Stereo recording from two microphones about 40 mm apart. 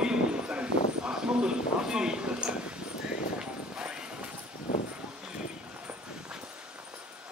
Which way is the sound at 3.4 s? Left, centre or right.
Right.